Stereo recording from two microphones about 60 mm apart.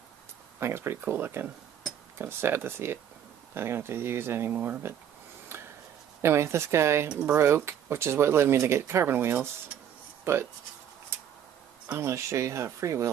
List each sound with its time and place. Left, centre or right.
0.6 s speech: right
1.0 s speech: right
4.5 s speech: right
6.2 s speech: right
7.1 s speech: centre
7.3 s speech: right
11.1 s tick-tock: right
12.0 s speech: right